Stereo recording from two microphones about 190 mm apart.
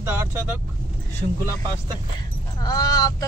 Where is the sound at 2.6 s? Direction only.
20° left (ahead or behind).